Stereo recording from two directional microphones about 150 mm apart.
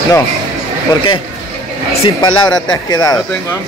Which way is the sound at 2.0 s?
30° left (ahead or behind).